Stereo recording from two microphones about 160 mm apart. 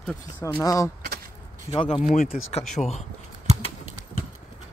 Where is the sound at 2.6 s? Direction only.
Centre (ahead or behind).